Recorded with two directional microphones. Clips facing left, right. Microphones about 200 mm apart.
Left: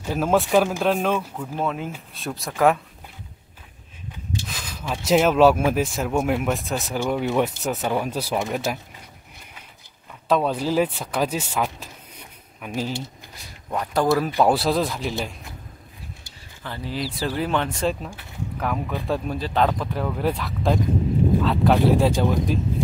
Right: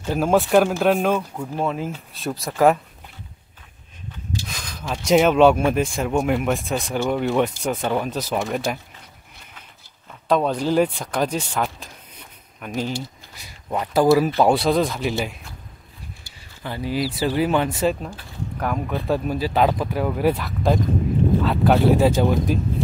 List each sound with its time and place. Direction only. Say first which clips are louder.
0.1 s speech: right 2 dB; centre (ahead or behind)
4.5 s speech: even; 5° left (ahead or behind)
10.2 s speech: right 1 dB; 5° left (ahead or behind)
13.7 s speech: right 3 dB; 10° right (ahead or behind)
14.4 s speech: right 2 dB; centre (ahead or behind)
16.6 s speech: right 5 dB; 10° right (ahead or behind)